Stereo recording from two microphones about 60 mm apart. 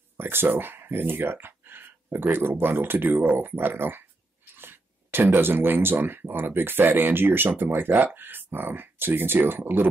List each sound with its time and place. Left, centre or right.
0.2 s speech: right